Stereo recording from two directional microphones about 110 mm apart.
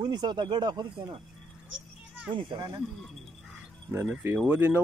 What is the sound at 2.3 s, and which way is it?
Speech, 45° right (ahead or behind).